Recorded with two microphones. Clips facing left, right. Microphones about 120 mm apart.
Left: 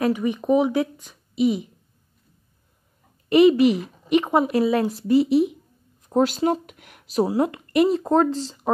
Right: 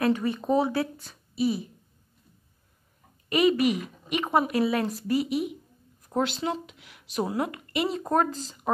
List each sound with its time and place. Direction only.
0.0 s a woman's voice: 15° left (ahead or behind)
3.3 s speech: 25° left (ahead or behind)
6.2 s speech: 40° left (ahead or behind)
7.2 s speech: 30° left (ahead or behind)